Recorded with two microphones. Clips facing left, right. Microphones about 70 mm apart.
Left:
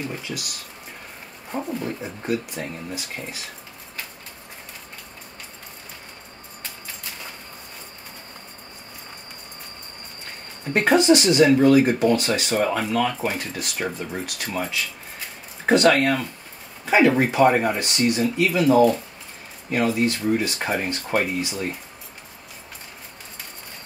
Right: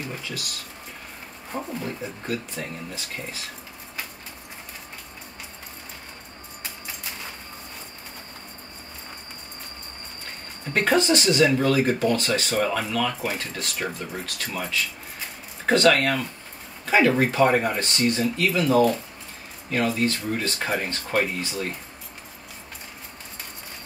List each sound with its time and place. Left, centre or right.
1.5 s speech: left
10.7 s speech: centre